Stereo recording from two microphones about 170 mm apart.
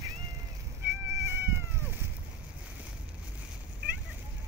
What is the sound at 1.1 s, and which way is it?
Cat, 15° right (ahead or behind).